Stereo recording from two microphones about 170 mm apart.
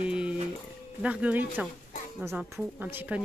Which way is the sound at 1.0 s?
10° right (ahead or behind).